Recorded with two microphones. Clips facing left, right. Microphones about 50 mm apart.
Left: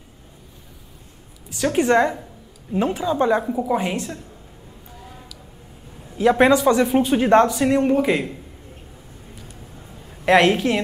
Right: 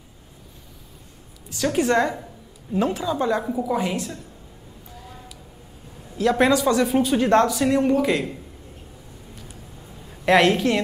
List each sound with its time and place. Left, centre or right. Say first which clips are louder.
1.5 s a woman's voice: left 3 dB; left
6.1 s speech: left 3 dB; left
10.0 s a woman's voice: left 2 dB; centre